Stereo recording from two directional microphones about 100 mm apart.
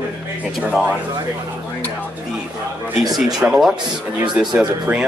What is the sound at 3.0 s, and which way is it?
Speech, 40° right (ahead or behind).